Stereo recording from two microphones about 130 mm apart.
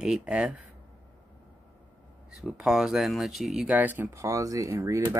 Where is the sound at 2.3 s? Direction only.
5° right (ahead or behind).